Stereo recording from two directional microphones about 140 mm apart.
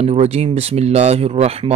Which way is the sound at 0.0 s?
50° right (ahead or behind).